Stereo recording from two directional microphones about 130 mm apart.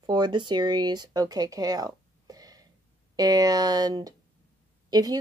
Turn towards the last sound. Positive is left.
turn(degrees=-30)  # may be behind; listen again after turning